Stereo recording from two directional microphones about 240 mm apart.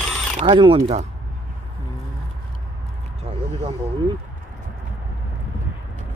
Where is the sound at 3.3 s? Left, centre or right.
Right.